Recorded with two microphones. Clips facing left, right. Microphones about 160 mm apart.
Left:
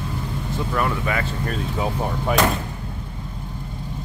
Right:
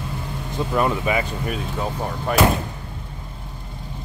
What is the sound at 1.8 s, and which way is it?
Speech, 10° left (ahead or behind).